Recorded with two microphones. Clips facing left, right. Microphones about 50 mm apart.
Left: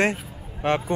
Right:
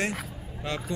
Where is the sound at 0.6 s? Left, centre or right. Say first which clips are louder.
Left 10 dB; left.